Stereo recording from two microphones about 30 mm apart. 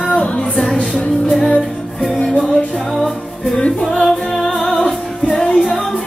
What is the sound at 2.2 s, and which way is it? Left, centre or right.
Music, centre.